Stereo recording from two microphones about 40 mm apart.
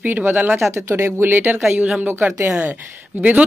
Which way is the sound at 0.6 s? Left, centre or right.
Right.